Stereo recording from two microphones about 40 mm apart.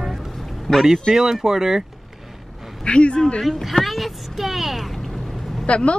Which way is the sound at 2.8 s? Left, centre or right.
Left.